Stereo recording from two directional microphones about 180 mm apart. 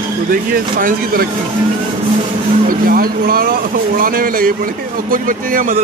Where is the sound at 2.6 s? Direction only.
55° right (ahead or behind).